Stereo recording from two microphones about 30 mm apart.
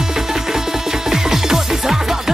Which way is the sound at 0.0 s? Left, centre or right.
Centre.